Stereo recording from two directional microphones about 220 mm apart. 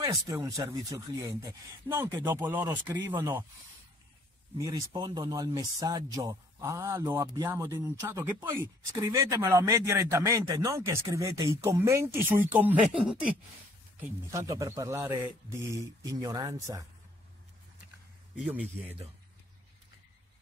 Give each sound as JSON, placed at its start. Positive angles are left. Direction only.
{"t": 0.0, "sound": "speech", "side_deg": -15}
{"t": 4.6, "sound": "speech", "side_deg": -15}
{"t": 18.3, "sound": "speech", "side_deg": -5}